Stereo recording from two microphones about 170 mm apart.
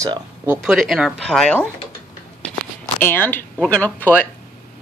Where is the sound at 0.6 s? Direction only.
Centre (ahead or behind).